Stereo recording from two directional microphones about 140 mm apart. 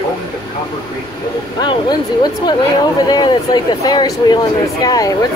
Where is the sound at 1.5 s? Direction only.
30° left (ahead or behind).